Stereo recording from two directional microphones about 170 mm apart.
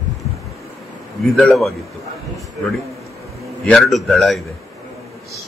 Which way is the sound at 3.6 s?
Centre (ahead or behind).